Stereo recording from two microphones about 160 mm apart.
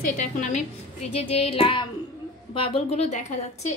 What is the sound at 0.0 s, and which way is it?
Speech, 50° left (ahead or behind).